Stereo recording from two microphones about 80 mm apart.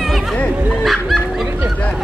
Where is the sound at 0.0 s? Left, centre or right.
Centre.